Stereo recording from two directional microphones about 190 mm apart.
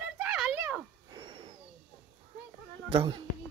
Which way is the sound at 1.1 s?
25° right (ahead or behind).